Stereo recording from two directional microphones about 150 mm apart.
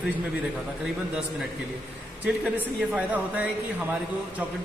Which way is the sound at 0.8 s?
Centre (ahead or behind).